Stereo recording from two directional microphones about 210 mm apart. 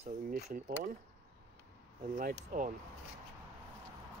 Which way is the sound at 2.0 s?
35° right (ahead or behind).